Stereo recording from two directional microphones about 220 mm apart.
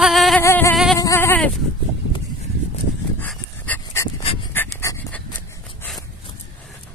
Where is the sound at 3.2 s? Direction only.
10° left (ahead or behind).